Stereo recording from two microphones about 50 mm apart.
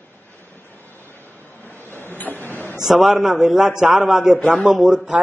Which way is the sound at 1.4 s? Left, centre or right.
Left.